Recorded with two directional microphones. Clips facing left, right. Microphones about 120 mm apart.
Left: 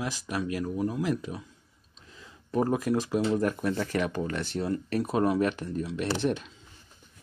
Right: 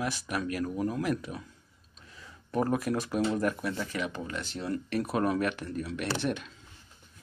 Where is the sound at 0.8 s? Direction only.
5° left (ahead or behind).